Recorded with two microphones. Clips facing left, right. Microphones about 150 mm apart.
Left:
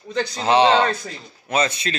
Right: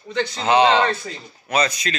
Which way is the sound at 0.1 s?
30° left (ahead or behind).